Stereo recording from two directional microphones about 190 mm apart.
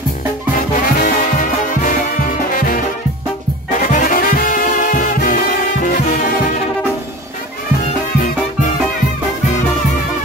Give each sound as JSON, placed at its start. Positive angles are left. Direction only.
{"t": 0.6, "sound": "music", "side_deg": 45}
{"t": 3.9, "sound": "music", "side_deg": 45}